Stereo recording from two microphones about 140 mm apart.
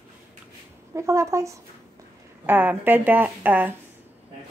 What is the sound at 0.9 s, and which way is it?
A woman's voice, 20° right (ahead or behind).